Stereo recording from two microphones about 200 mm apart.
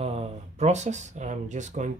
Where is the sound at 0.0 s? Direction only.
30° right (ahead or behind).